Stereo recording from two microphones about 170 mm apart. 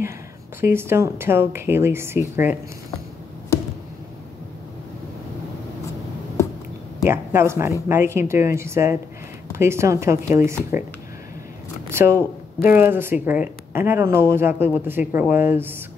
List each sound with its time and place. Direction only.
0.6 s speech: 15° right (ahead or behind)
7.1 s speech: 15° right (ahead or behind)
11.9 s speech: 15° right (ahead or behind)